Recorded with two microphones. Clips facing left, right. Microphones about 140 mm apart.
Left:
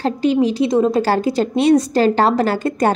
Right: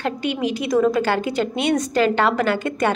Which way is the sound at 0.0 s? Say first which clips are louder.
Left 7 dB; 35° left (ahead or behind).